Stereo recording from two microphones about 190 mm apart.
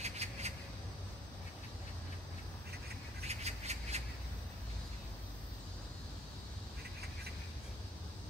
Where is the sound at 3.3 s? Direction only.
35° right (ahead or behind).